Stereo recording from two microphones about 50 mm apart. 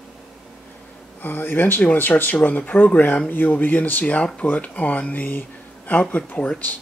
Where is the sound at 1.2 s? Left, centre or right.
Left.